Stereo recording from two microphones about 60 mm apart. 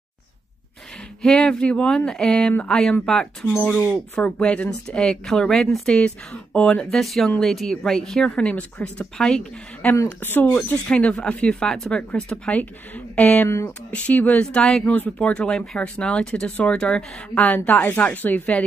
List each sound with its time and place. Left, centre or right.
1.2 s a woman's voice: centre
5.9 s a woman's voice: centre
7.0 s a woman's voice: centre
8.4 s speech: left
10.2 s speech: left
10.9 s a woman's voice: left
12.2 s speech: left
14.4 s a woman's voice: centre
14.9 s speech: left
15.5 s a woman's voice: centre
17.6 s speech: left